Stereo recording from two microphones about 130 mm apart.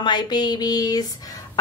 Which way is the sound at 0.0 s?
35° left (ahead or behind).